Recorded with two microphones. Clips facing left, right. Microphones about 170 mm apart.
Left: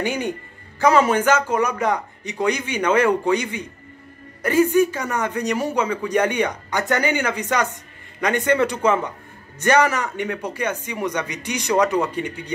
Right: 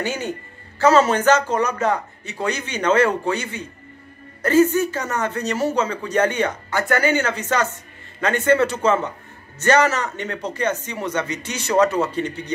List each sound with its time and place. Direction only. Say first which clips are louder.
0.0 s a man's voice: left 2 dB; 15° left (ahead or behind)